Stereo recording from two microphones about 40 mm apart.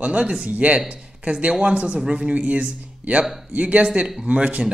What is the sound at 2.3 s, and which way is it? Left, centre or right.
A man's voice, right.